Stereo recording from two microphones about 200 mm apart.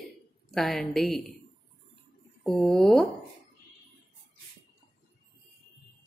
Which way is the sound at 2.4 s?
Centre (ahead or behind).